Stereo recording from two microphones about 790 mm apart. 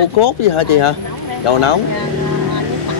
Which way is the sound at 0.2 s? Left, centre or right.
Left.